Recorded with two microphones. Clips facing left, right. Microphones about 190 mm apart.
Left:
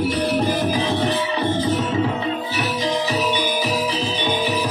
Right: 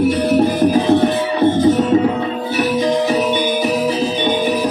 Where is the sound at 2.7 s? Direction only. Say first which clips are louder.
Right 6 dB; 50° right (ahead or behind).